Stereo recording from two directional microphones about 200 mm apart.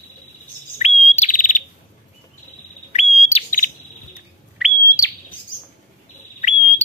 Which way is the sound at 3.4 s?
30° left (ahead or behind).